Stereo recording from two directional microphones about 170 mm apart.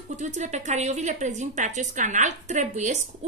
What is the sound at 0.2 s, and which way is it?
Speech, 45° right (ahead or behind).